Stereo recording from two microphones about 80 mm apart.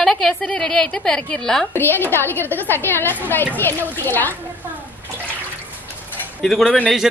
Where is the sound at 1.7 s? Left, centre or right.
Left.